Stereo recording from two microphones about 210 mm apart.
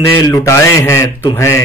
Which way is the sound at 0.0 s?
10° left (ahead or behind).